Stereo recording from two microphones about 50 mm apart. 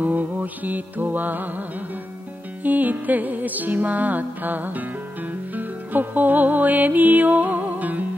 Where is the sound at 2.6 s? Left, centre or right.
Right.